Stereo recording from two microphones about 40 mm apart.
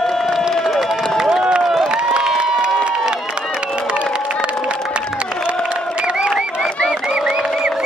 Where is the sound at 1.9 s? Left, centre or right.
Right.